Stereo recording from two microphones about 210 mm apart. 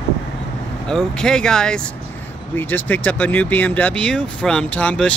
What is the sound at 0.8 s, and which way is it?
Speech, 5° left (ahead or behind).